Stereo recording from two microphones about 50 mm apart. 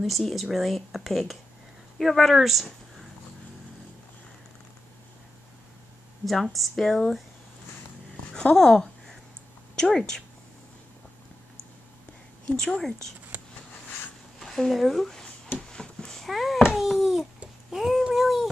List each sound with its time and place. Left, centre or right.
0.0 s speech: centre
6.2 s speech: centre
8.3 s a woman's voice: centre
12.4 s a woman's voice: centre
14.4 s a sound: centre
15.7 s cat: centre
16.2 s babbling: centre
16.8 s a sound: centre